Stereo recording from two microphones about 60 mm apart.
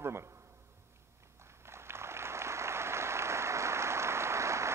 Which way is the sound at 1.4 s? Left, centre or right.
Right.